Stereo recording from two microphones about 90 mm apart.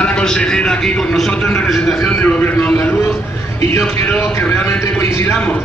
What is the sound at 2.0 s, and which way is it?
Speech, 20° left (ahead or behind).